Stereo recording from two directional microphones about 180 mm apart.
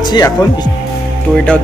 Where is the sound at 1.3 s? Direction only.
5° left (ahead or behind).